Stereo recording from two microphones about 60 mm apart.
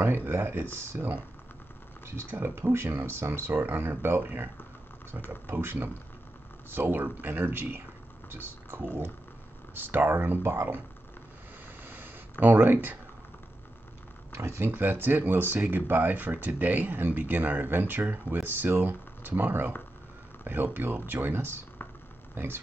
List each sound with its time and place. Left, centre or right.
0.3 s speech: right
5.5 s speech: right
8.3 s speech: right
11.8 s writing: right
14.3 s speech: right
14.7 s speech: right